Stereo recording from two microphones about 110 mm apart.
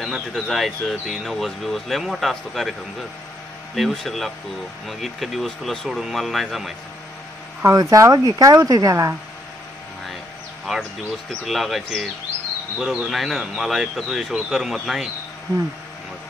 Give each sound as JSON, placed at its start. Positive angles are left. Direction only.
{"t": 0.0, "sound": "speech", "side_deg": 0}
{"t": 3.7, "sound": "speech", "side_deg": 0}
{"t": 7.6, "sound": "speech", "side_deg": -30}
{"t": 10.7, "sound": "speech", "side_deg": 5}